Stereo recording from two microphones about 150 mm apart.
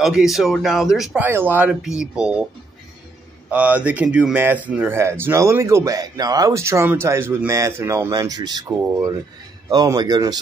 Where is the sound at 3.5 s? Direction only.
10° right (ahead or behind).